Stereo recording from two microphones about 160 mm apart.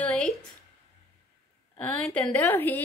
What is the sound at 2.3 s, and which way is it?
Speech, 15° left (ahead or behind).